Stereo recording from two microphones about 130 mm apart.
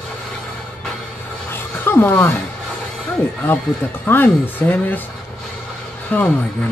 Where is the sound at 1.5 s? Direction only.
15° left (ahead or behind).